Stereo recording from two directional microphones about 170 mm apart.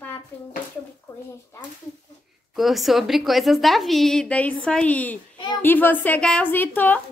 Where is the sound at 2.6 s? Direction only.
Centre (ahead or behind).